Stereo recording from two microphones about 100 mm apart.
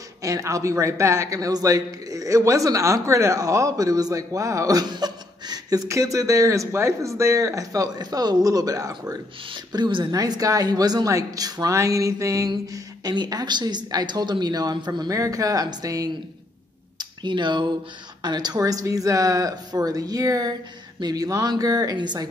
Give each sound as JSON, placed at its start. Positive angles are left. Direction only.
{"t": 0.2, "sound": "a man's voice", "side_deg": -35}
{"t": 9.5, "sound": "speech", "side_deg": -50}
{"t": 10.1, "sound": "a man's voice", "side_deg": -40}
{"t": 17.0, "sound": "a man's voice", "side_deg": -50}